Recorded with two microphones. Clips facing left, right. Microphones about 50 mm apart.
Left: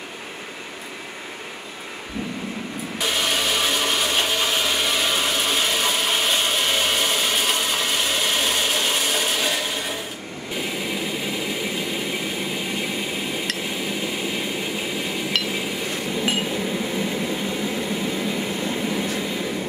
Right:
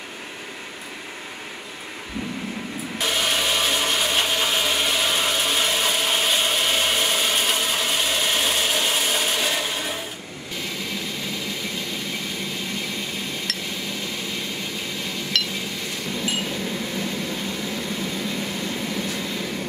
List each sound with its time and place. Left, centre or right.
3.0 s a sound: centre
10.5 s vehicle: centre
13.6 s glass: centre
16.3 s microwave oven: centre